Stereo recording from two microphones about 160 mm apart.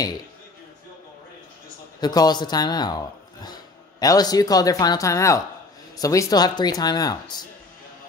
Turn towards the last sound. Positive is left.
turn(degrees=25)  # may be behind; listen again after turning